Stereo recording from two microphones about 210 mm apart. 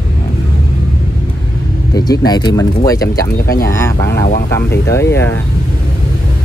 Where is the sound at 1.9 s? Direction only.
20° left (ahead or behind).